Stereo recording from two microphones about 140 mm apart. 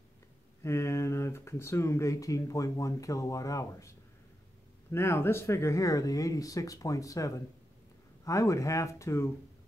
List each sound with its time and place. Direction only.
0.7 s speech: 20° left (ahead or behind)
4.9 s speech: 15° left (ahead or behind)